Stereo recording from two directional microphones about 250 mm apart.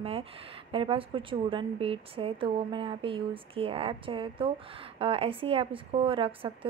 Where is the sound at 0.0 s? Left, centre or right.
Right.